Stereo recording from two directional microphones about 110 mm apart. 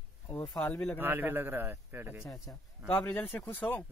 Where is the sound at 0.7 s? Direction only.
20° left (ahead or behind).